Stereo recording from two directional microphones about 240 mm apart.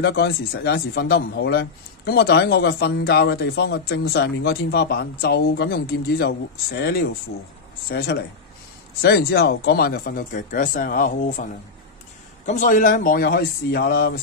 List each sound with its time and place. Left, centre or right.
0.0 s speech: left
12.4 s speech: left